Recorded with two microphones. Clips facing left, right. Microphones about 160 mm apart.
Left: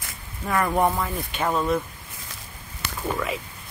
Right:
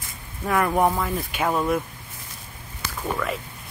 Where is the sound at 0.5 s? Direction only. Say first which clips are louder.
Right 1 dB; centre (ahead or behind).